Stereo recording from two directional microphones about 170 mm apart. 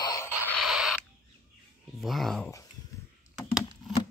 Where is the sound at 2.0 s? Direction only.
Centre (ahead or behind).